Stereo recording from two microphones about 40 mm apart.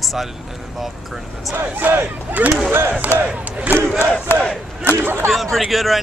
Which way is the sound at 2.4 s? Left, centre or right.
Right.